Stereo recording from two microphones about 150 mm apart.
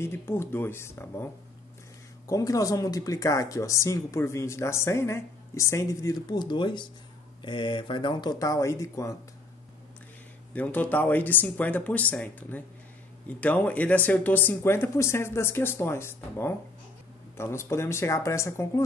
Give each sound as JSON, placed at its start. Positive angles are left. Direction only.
{"t": 0.0, "sound": "speech", "side_deg": 15}
{"t": 10.5, "sound": "speech", "side_deg": 10}